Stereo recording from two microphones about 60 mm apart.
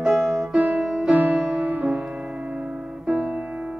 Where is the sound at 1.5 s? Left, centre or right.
Right.